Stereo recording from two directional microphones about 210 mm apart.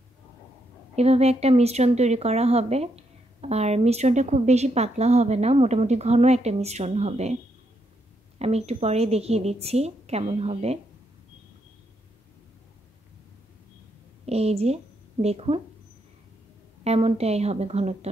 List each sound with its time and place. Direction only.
0.9 s speech: 30° right (ahead or behind)
8.4 s speech: 30° right (ahead or behind)
14.2 s speech: 30° right (ahead or behind)
16.8 s speech: 30° right (ahead or behind)